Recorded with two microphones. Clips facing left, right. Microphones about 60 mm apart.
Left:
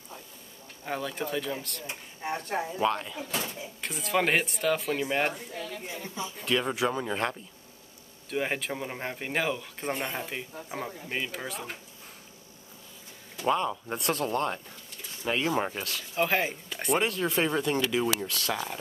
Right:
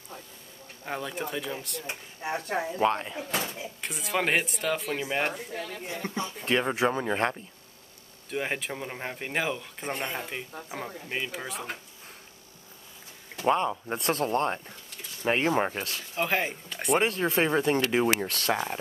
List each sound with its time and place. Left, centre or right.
0.8 s speech: centre
2.2 s speech: right
2.8 s speech: right
3.8 s speech: centre
5.5 s speech: right
6.4 s speech: right
8.3 s speech: centre
13.5 s speech: centre
13.9 s speech: right
16.2 s speech: centre
17.1 s speech: right
18.5 s speech: right